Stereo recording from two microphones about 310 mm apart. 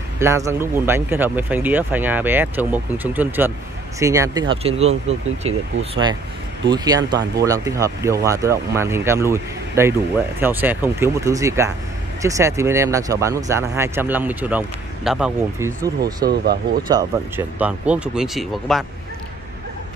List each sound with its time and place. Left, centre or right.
0.2 s speech: centre
16.3 s speech: right
17.6 s speech: centre